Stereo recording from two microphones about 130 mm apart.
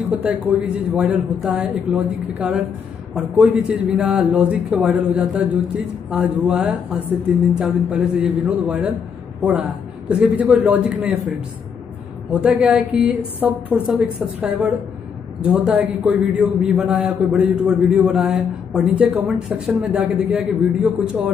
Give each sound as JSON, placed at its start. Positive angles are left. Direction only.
{"t": 0.1, "sound": "a man's voice", "side_deg": -10}